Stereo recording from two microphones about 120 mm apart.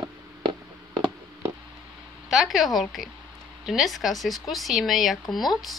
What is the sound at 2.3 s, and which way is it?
A woman's voice, centre (ahead or behind).